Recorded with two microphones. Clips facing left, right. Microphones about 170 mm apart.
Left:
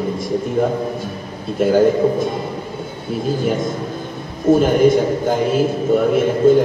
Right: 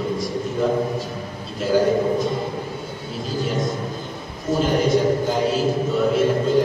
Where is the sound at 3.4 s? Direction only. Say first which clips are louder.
Left 4 dB; 55° left (ahead or behind).